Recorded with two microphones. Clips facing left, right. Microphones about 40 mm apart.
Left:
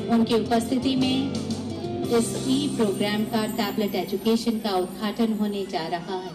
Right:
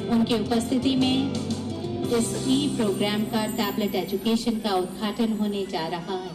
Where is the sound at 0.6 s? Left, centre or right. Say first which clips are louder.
Right 1 dB; right.